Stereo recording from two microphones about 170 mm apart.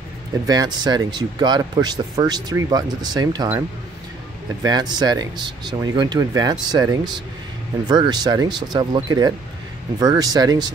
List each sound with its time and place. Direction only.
0.5 s a man's voice: 25° right (ahead or behind)
4.6 s a man's voice: 25° right (ahead or behind)